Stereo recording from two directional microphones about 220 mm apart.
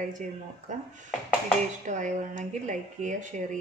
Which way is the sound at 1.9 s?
35° right (ahead or behind).